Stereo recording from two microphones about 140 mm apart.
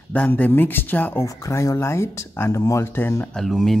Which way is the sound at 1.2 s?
25° left (ahead or behind).